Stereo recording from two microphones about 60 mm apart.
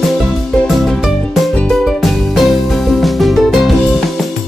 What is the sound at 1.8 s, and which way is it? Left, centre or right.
Music, centre.